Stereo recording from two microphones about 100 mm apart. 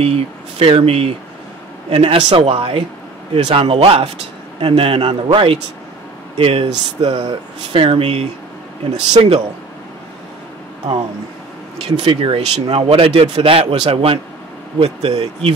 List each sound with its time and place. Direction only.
0.0 s speech: 75° right (ahead or behind)
9.1 s speech: 90° right
12.0 s speech: 65° right (ahead or behind)
14.8 s speech: 90° right